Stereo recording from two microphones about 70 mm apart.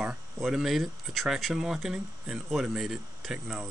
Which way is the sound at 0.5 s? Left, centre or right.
Centre.